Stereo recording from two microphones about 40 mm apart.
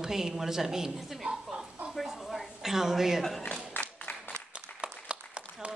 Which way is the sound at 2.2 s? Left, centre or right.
Centre.